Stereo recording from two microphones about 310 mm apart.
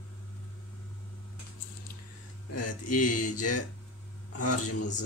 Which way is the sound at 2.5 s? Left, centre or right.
Left.